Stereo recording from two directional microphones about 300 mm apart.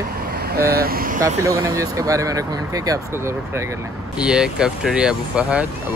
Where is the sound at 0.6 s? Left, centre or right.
Right.